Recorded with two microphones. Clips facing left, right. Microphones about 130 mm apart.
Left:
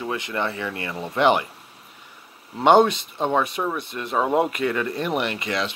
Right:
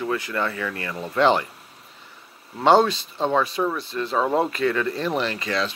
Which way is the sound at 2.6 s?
15° left (ahead or behind).